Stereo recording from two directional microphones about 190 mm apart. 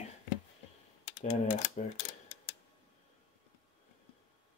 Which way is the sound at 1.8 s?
35° left (ahead or behind).